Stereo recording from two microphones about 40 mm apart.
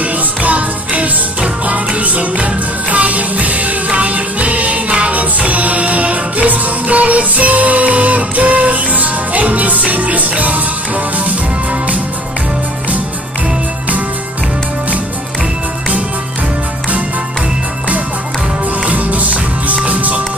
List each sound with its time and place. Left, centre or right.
0.0 s music: right
18.9 s music: right